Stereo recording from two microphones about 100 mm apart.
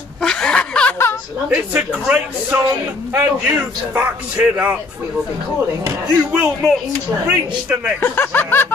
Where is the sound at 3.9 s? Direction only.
15° right (ahead or behind).